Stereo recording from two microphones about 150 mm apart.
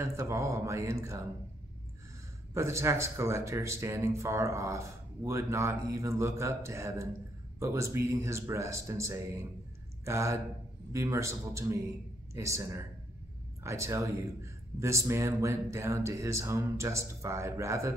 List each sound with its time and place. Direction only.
0.0 s speech: 20° right (ahead or behind)
2.5 s speech: 20° right (ahead or behind)